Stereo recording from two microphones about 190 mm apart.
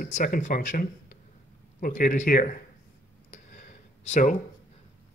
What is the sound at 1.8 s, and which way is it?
Speech, 45° left (ahead or behind).